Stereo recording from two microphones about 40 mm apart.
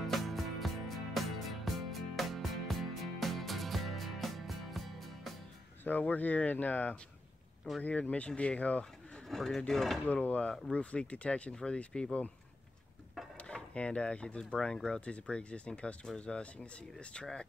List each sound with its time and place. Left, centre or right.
0.0 s music: centre
5.9 s speech: left
9.3 s speech: centre
10.2 s speech: left
13.5 s speech: left
15.0 s speech: left